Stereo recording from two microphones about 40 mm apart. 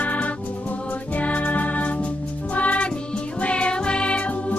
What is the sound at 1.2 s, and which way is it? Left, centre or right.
Music, left.